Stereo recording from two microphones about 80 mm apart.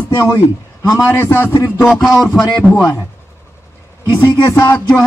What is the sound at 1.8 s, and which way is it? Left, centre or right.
Speech, centre.